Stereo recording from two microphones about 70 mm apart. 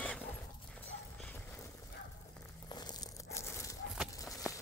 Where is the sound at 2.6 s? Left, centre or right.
Left.